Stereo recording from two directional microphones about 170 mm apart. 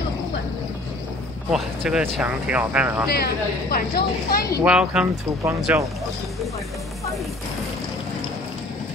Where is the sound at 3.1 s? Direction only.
65° left (ahead or behind).